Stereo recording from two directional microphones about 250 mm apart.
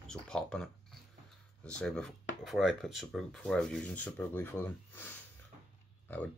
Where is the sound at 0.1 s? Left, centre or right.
Centre.